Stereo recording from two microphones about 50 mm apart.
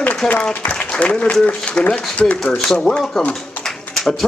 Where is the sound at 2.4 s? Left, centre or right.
Centre.